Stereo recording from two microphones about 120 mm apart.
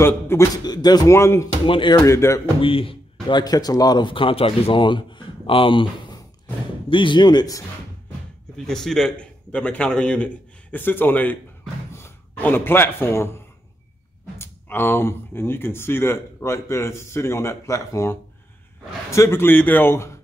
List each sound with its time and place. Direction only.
0.0 s speech: 20° left (ahead or behind)
0.7 s speech: 35° left (ahead or behind)
1.1 s speech: 20° left (ahead or behind)
1.7 s speech: 45° left (ahead or behind)
2.0 s speech: 25° left (ahead or behind)
2.6 s speech: 50° left (ahead or behind)
6.9 s speech: 45° left (ahead or behind)
8.5 s a man's voice: 5° left (ahead or behind); by 13.4 s 20° left (ahead or behind)
14.4 s speech: 20° left (ahead or behind)